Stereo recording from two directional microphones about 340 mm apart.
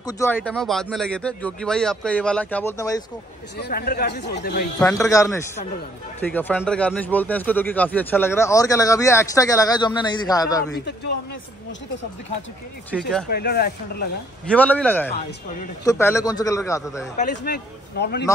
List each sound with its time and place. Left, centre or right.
0.0 s speech: centre
3.5 s speech: left
4.7 s speech: centre
13.3 s speech: left
14.4 s speech: centre
17.4 s speech: left